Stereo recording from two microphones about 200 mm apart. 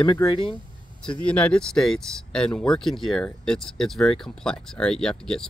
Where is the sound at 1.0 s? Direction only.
5° left (ahead or behind).